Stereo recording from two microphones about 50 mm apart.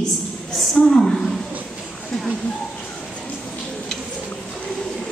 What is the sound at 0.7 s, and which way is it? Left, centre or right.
Speech, centre.